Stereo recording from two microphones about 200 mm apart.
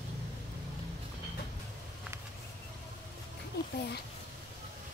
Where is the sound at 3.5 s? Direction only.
50° left (ahead or behind).